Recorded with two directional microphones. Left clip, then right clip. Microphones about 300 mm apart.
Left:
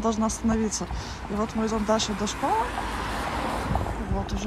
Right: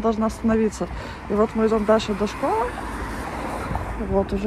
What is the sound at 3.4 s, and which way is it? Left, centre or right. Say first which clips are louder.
Boat: even; left.